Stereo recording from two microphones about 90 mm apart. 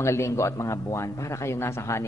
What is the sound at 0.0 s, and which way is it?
A man's voice, 30° left (ahead or behind).